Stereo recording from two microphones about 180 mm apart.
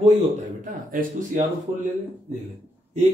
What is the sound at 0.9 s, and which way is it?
Speech, 50° right (ahead or behind).